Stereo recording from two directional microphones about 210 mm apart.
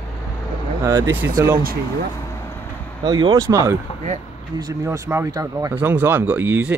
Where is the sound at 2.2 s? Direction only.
15° left (ahead or behind).